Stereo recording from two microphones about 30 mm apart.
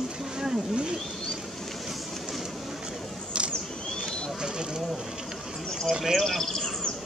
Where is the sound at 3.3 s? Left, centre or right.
Right.